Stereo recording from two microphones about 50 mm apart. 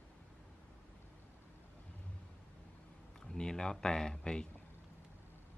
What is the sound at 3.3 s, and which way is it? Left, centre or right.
Speech, centre.